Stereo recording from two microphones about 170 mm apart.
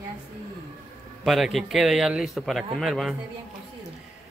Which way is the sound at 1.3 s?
Centre (ahead or behind).